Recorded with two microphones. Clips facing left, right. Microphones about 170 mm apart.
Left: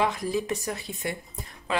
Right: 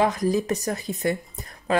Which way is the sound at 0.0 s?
40° right (ahead or behind).